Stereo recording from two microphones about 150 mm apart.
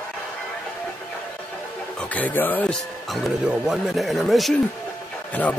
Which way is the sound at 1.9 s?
10° left (ahead or behind).